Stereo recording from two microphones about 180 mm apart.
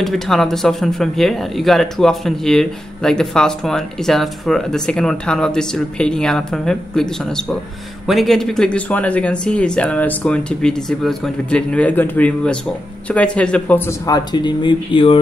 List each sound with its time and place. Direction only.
0.0 s speech: centre (ahead or behind); by 15.1 s 30° left (ahead or behind)